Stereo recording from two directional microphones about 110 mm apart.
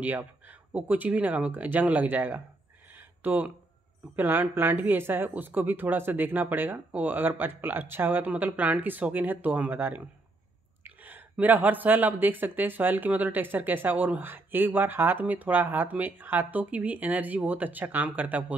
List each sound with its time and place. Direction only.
0.0 s speech: 15° right (ahead or behind)